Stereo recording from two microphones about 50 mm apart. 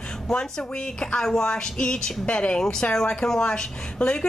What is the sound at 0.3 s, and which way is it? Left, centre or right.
A woman's voice, centre.